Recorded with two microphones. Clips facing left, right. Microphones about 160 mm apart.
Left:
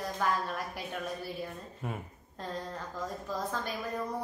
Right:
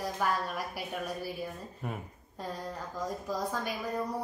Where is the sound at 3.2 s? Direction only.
10° right (ahead or behind).